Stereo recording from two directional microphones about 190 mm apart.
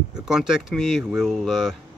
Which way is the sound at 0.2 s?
Centre (ahead or behind).